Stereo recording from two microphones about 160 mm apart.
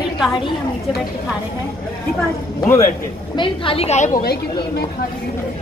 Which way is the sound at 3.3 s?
35° left (ahead or behind).